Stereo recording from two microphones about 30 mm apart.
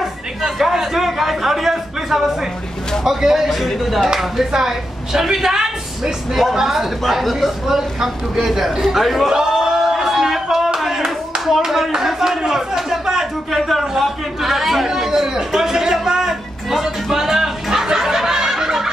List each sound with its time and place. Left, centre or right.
0.6 s a man's voice: centre
3.4 s a man's voice: centre
4.6 s a woman's voice: centre
7.0 s a man's voice: centre
7.6 s a man's voice: centre
9.3 s a sound: centre
11.6 s speech: centre
13.0 s a sound: centre
13.5 s a man's voice: centre
14.9 s a man's voice: centre
16.2 s music: centre